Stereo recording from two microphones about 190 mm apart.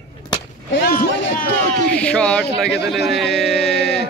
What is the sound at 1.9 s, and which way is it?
Speech, 5° left (ahead or behind).